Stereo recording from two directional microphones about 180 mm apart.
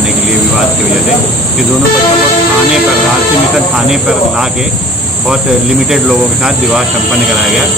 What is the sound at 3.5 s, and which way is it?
Speech, 5° right (ahead or behind).